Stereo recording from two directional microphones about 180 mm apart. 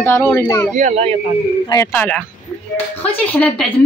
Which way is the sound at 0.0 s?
15° left (ahead or behind).